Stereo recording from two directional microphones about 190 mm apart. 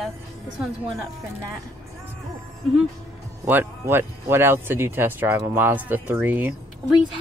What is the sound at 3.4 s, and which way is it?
Speech, 10° right (ahead or behind).